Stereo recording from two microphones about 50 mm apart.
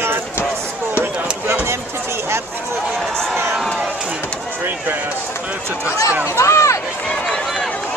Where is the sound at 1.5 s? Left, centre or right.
Right.